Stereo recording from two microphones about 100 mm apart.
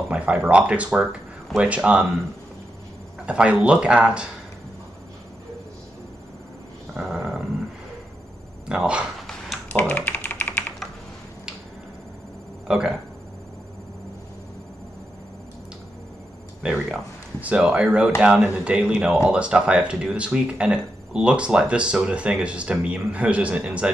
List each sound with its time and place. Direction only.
0.1 s speech: 15° right (ahead or behind)
3.3 s speech: 10° right (ahead or behind)
6.9 s a sound: 5° right (ahead or behind)
8.6 s speech: 10° right (ahead or behind)
9.7 s typing: 15° left (ahead or behind)
12.6 s speech: 5° right (ahead or behind)
17.4 s speech: 15° right (ahead or behind)